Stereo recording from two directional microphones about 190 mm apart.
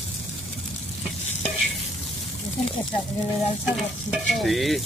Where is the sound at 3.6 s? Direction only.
Centre (ahead or behind).